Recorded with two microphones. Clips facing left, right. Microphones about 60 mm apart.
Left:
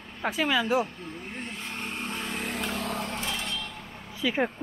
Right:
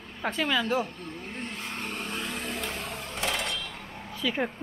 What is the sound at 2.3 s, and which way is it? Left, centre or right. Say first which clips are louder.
Vehicle: left 2 dB; left.